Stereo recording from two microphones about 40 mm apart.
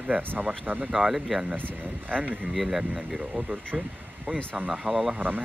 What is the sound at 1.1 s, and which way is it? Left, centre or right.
Speech, centre.